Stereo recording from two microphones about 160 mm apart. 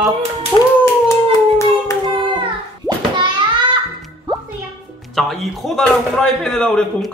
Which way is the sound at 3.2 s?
30° right (ahead or behind).